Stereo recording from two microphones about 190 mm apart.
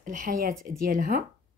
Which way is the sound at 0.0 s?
45° right (ahead or behind).